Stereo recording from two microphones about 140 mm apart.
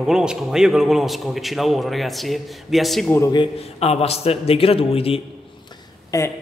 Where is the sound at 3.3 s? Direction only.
40° left (ahead or behind).